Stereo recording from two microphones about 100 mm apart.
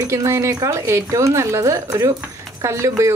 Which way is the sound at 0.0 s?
30° right (ahead or behind).